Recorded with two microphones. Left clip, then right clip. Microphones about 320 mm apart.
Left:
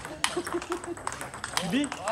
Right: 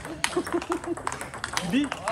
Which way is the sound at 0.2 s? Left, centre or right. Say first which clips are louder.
Right 2 dB; centre.